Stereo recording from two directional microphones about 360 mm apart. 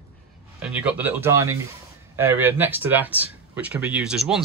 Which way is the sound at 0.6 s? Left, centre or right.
Centre.